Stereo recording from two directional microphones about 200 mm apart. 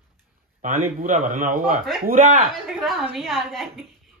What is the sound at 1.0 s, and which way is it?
A man's voice, 40° right (ahead or behind).